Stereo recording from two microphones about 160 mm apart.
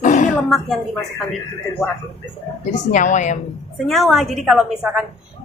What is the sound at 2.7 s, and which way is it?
Speech, 50° left (ahead or behind).